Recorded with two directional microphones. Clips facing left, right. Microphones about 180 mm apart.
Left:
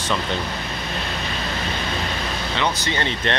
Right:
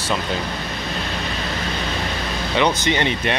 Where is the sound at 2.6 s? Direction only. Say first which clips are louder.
Right 6 dB; 15° right (ahead or behind).